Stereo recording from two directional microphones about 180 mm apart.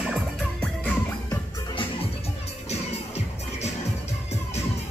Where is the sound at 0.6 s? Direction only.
10° left (ahead or behind).